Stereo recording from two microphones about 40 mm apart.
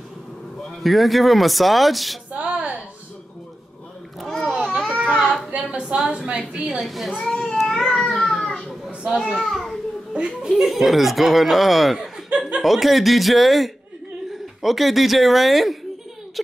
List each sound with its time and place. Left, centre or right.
0.8 s speech: centre
2.3 s a sound: right
4.3 s a sound: centre
5.5 s a sound: right
5.9 s a woman's voice: centre
6.7 s speech: centre
7.2 s cat: centre
9.2 s a child's voice: centre
12.3 s chuckle: right
12.6 s speech: centre